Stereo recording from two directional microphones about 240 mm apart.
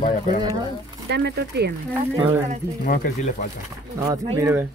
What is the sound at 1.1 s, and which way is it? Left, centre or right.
Speech, right.